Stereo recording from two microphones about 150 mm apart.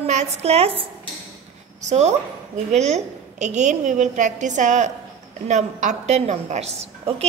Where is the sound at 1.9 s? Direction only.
50° right (ahead or behind).